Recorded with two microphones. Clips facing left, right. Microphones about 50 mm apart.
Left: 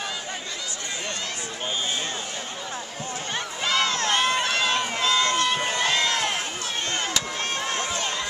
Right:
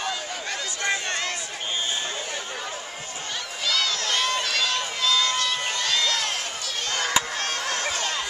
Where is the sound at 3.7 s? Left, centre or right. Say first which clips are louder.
Left 2 dB; left.